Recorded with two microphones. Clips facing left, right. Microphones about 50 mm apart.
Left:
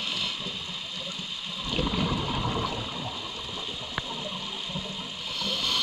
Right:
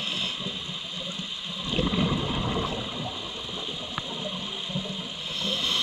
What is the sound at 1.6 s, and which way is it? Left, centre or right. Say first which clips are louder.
Water: right 2 dB; right.